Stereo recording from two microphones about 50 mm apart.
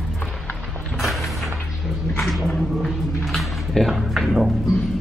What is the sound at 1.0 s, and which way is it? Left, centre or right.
Music, centre.